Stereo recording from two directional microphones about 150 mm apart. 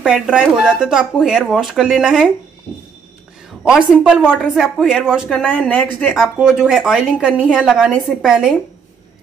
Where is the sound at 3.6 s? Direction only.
5° right (ahead or behind).